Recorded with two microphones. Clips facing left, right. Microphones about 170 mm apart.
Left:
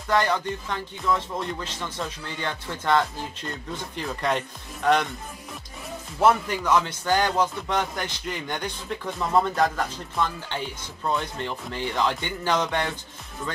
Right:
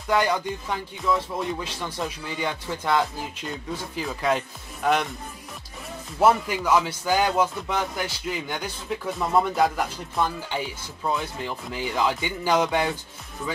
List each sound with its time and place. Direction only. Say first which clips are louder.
0.1 s speech: even; 10° right (ahead or behind)
6.1 s speech: right 1 dB; 10° right (ahead or behind)